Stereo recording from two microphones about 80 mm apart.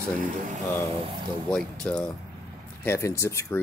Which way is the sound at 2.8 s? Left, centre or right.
Left.